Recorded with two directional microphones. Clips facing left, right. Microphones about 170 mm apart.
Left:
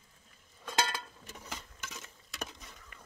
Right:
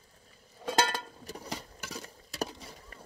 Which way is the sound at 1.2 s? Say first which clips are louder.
Right 6 dB; 35° right (ahead or behind).